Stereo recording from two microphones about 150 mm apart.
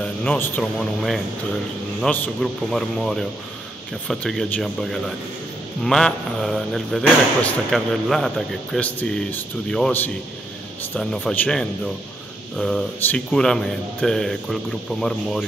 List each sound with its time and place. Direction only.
0.0 s a man's voice: 10° left (ahead or behind)
0.7 s speech: centre (ahead or behind)